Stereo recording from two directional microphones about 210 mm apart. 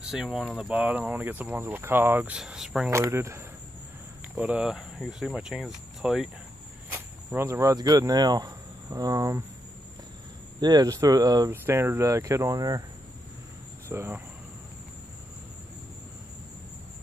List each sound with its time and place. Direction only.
0.0 s speech: 5° right (ahead or behind)
10.6 s speech: 20° right (ahead or behind)
13.8 s speech: 10° right (ahead or behind)